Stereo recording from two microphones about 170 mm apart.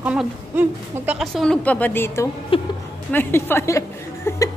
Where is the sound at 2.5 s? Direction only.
30° left (ahead or behind).